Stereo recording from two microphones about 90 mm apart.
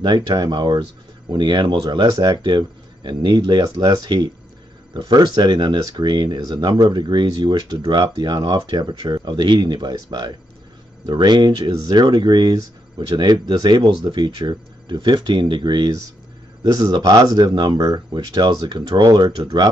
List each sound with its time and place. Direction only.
0.0 s speech: 50° right (ahead or behind)